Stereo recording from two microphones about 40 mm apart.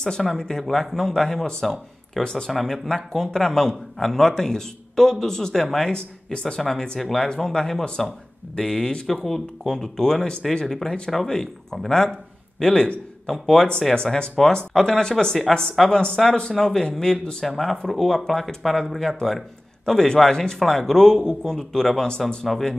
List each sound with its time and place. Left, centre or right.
0.2 s a man's voice: centre
2.5 s a man's voice: centre
5.9 s speech: left
7.0 s speech: centre
7.2 s a man's voice: centre
17.5 s a man's voice: centre